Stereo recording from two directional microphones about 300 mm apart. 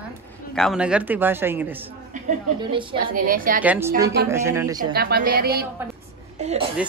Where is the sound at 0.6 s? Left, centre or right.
Centre.